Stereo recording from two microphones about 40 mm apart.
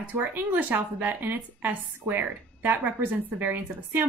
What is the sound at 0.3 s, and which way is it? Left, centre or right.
Speech, right.